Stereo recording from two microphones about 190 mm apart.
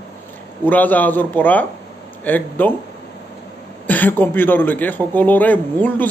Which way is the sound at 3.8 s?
10° left (ahead or behind).